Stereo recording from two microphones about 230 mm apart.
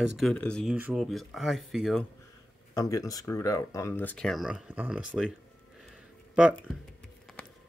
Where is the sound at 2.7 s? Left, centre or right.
Centre.